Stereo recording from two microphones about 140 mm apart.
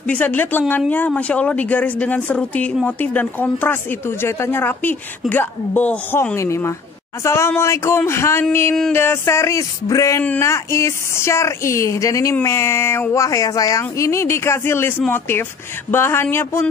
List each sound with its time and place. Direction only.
0.0 s speech: 10° left (ahead or behind)
6.3 s speech: 20° left (ahead or behind)